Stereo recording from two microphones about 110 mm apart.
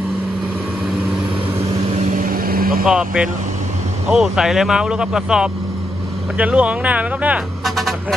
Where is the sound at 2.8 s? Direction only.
5° right (ahead or behind).